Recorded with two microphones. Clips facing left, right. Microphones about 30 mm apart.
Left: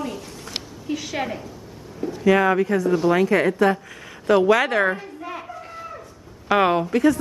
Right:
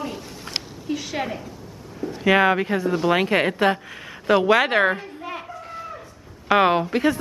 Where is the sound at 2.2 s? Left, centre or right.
Right.